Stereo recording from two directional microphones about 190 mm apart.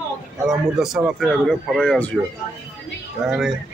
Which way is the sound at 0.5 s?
Centre (ahead or behind).